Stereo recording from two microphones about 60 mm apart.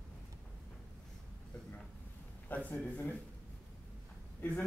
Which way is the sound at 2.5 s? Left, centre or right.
Left.